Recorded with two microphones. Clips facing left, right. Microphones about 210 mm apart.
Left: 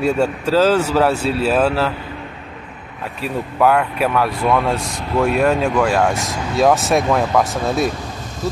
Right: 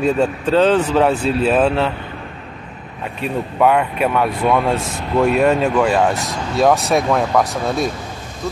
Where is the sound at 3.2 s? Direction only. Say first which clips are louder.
Right 1 dB; centre (ahead or behind).